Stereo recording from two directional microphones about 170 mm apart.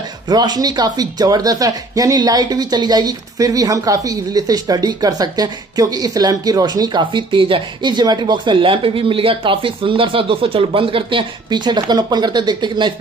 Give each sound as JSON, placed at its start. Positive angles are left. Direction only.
{"t": 0.3, "sound": "speech", "side_deg": -25}